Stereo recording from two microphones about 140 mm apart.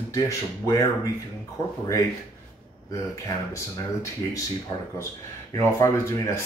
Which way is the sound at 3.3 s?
25° left (ahead or behind).